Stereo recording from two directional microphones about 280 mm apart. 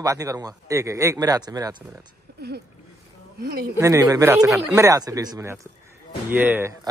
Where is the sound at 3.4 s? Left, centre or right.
Right.